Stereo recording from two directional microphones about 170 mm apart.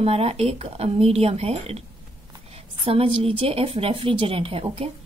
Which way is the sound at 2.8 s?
35° right (ahead or behind).